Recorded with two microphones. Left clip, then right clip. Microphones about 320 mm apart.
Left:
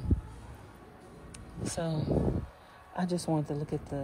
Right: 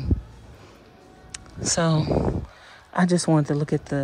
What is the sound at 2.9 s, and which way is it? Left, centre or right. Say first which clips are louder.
Speech: right 11 dB; right.